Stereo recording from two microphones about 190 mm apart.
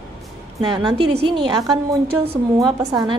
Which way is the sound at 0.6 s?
25° right (ahead or behind).